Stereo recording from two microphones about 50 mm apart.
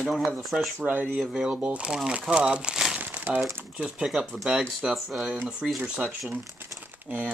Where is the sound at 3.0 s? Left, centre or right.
Right.